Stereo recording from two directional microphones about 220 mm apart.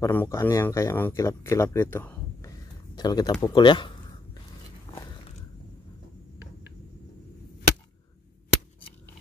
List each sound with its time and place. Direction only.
0.0 s speech: 10° left (ahead or behind)